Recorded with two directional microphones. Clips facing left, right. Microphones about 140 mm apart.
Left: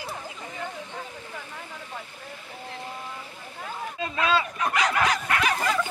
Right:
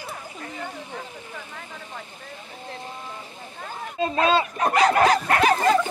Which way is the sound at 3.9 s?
35° right (ahead or behind).